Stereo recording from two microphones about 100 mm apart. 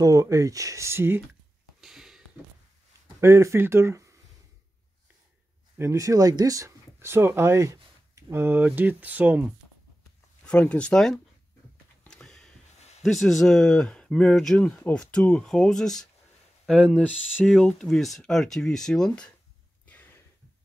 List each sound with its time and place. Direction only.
0.0 s speech: 35° right (ahead or behind)
1.8 s a sound: 5° right (ahead or behind)
3.2 s speech: 30° right (ahead or behind)
5.8 s speech: 30° right (ahead or behind); by 9.5 s 15° right (ahead or behind)
10.4 s speech: 10° left (ahead or behind)
12.0 s a sound: 5° left (ahead or behind)
13.0 s speech: centre (ahead or behind)
16.6 s speech: 10° right (ahead or behind)
17.5 s speech: 5° left (ahead or behind)
19.9 s a sound: 20° left (ahead or behind)